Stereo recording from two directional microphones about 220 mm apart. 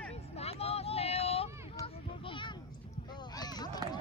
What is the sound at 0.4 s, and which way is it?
Vehicle, 30° left (ahead or behind).